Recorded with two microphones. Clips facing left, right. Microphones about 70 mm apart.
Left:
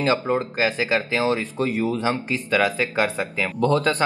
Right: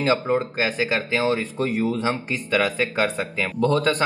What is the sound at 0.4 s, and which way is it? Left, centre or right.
Speech, right.